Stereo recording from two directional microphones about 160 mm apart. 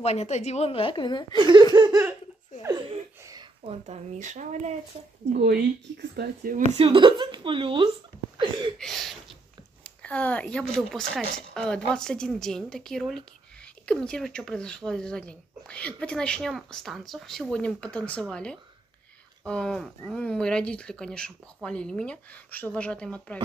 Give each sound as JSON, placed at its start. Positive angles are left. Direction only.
{"t": 0.0, "sound": "a woman's voice", "side_deg": 45}
{"t": 1.3, "sound": "speech", "side_deg": -30}
{"t": 3.6, "sound": "speech", "side_deg": -45}
{"t": 5.4, "sound": "speech", "side_deg": -90}
{"t": 6.7, "sound": "speech", "side_deg": -35}
{"t": 8.4, "sound": "a sound", "side_deg": -30}
{"t": 8.7, "sound": "a sound", "side_deg": 0}
{"t": 10.0, "sound": "speech", "side_deg": 10}